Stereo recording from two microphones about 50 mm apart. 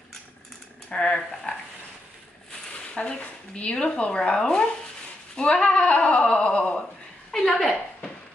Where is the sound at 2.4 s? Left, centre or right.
Left.